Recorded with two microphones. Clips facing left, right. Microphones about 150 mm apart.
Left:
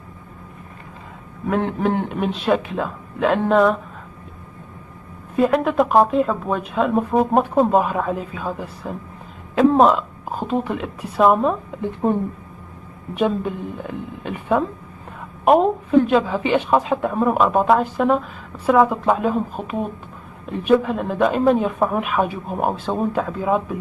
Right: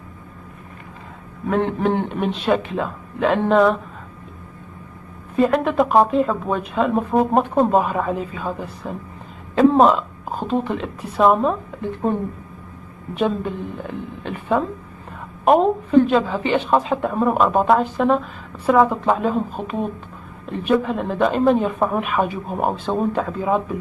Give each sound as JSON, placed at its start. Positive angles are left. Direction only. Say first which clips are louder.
{"t": 1.5, "sound": "speech", "louder": "right 1 dB", "side_deg": 0}
{"t": 5.3, "sound": "a woman's voice", "louder": "even", "side_deg": 0}
{"t": 12.0, "sound": "speech", "louder": "left 2 dB", "side_deg": 20}
{"t": 13.1, "sound": "speech", "louder": "left 1 dB", "side_deg": 5}